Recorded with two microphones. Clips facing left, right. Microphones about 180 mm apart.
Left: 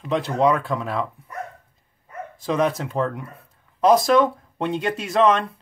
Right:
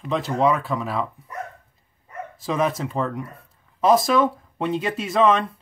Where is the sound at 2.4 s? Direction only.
Centre (ahead or behind).